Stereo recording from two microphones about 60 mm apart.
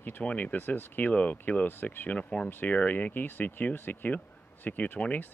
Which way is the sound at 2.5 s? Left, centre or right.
Left.